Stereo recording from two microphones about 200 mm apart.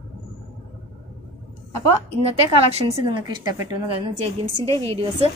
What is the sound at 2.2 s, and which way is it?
A woman's voice, 30° right (ahead or behind).